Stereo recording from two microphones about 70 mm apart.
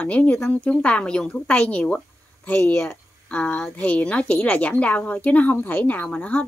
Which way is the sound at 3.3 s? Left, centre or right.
Centre.